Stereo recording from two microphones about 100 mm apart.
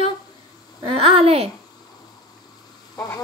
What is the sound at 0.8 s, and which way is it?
Speech, 75° right (ahead or behind).